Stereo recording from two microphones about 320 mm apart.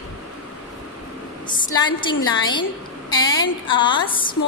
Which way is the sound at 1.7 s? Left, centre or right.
Centre.